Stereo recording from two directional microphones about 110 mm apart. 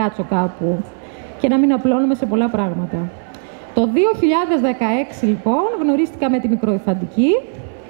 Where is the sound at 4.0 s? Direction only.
15° right (ahead or behind).